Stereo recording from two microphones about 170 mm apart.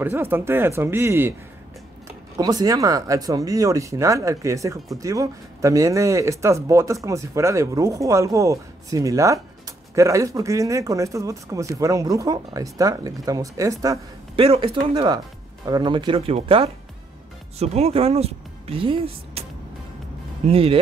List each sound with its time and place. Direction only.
0.0 s speech: 15° right (ahead or behind)
14.3 s speech: 35° right (ahead or behind)
20.4 s speech: 35° right (ahead or behind)